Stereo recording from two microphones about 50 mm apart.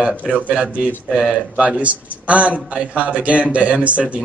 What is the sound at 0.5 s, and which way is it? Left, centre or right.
A man's voice, right.